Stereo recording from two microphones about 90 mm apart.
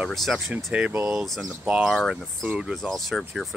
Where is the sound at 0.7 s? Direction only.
15° right (ahead or behind).